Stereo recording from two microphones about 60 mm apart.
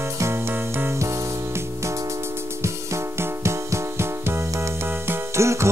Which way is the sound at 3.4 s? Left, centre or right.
Right.